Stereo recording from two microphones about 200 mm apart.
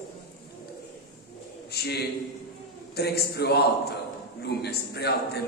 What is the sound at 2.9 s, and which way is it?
A man's voice, 50° left (ahead or behind).